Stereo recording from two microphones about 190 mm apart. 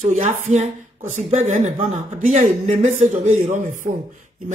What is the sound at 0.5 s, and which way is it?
Speech, 40° right (ahead or behind).